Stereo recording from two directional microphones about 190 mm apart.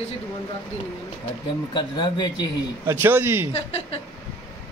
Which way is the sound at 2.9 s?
10° right (ahead or behind).